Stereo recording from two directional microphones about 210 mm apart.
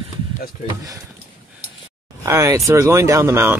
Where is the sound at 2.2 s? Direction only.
15° right (ahead or behind).